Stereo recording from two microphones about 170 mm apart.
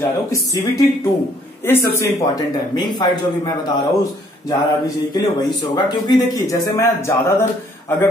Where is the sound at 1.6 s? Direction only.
15° left (ahead or behind).